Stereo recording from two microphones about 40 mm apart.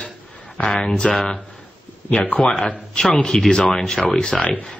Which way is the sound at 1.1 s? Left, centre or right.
Centre.